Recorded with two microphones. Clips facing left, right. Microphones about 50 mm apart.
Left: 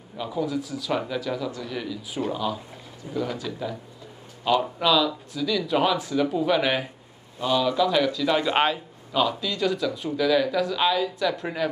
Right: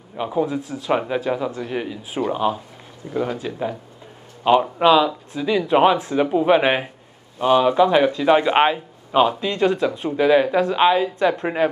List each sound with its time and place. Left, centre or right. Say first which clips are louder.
0.2 s speech: right 5 dB; right
9.1 s speech: right 7 dB; right